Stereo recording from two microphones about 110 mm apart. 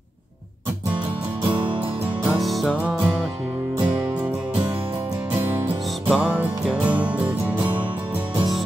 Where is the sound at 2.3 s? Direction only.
Centre (ahead or behind).